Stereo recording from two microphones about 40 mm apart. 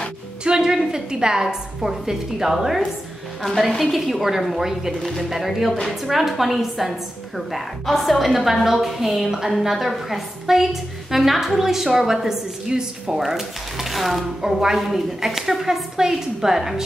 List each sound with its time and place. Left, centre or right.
0.4 s a sound: right
0.7 s a woman's voice: centre
3.9 s a woman's voice: centre
14.4 s a woman's voice: centre